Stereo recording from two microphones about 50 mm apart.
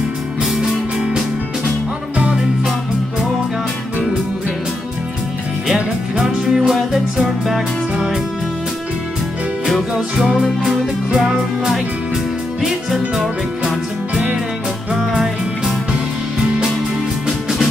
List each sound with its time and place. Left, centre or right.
0.4 s music: centre
5.7 s music: centre
9.7 s music: centre
10.1 s music: centre
10.4 s music: centre
11.1 s music: centre
11.3 s music: centre
17.3 s music: centre